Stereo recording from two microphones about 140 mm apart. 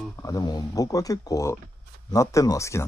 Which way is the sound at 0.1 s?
25° left (ahead or behind).